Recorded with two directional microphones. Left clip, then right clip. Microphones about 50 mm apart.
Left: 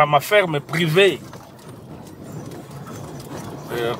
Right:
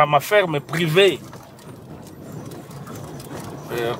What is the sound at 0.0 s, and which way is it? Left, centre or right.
Speech, centre.